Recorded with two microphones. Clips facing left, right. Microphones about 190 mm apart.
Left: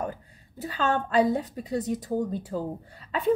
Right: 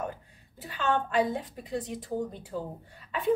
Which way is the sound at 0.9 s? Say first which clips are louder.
Left 5 dB; 40° left (ahead or behind).